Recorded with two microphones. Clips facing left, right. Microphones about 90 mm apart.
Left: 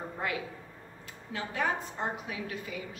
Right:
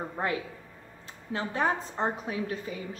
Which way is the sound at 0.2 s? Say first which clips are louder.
Right 4 dB; 30° right (ahead or behind).